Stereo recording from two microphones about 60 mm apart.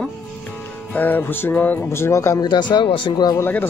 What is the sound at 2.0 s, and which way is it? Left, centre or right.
Speech, left.